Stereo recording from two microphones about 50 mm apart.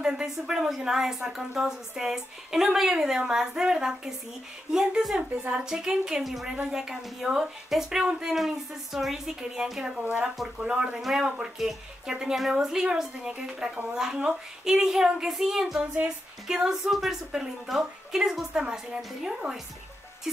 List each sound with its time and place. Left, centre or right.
0.0 s speech: centre
10.0 s speech: right
10.3 s speech: centre
10.7 s speech: centre